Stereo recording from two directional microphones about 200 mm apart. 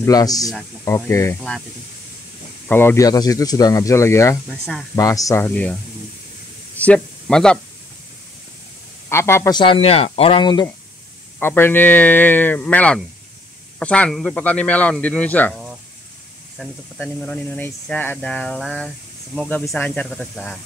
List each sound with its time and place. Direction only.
0.0 s a man's voice: 20° left (ahead or behind)
2.7 s a man's voice: 10° left (ahead or behind)
4.5 s speech: centre (ahead or behind)
4.9 s a man's voice: 15° left (ahead or behind)
6.8 s spray: 5° left (ahead or behind)
9.1 s speech: 15° left (ahead or behind)
11.3 s a man's voice: 10° left (ahead or behind)
17.0 s a man's voice: 5° left (ahead or behind)